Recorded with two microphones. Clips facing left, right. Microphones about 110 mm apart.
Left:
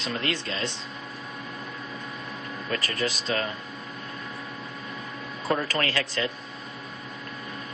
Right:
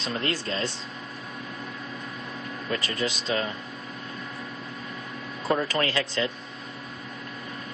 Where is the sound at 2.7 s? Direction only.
25° right (ahead or behind).